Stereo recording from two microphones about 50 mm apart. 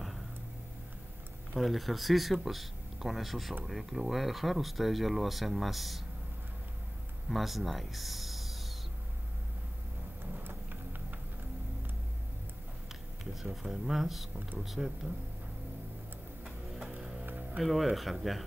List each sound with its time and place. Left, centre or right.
1.5 s speech: centre
7.2 s speech: centre
10.3 s a sound: right
13.2 s speech: centre
16.4 s vehicle: centre
16.9 s music: right
17.6 s speech: centre